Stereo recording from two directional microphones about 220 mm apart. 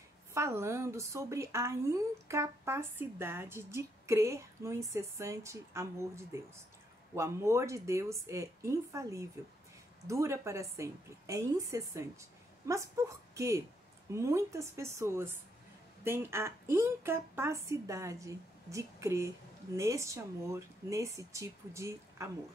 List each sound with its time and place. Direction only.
0.3 s a woman's voice: 10° right (ahead or behind)